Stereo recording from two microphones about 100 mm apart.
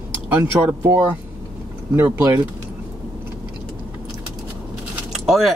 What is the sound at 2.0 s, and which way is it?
Speech, 20° right (ahead or behind).